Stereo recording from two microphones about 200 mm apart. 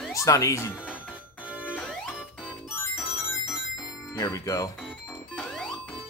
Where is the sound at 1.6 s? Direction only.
5° left (ahead or behind).